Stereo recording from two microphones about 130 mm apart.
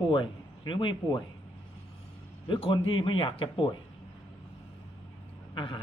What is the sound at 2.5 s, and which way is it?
Speech, 40° left (ahead or behind).